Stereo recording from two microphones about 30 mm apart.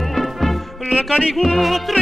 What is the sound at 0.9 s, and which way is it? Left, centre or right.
Music, right.